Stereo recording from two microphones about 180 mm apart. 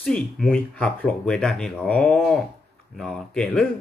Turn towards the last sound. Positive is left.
turn(degrees=5)  # may be behind; listen again after turning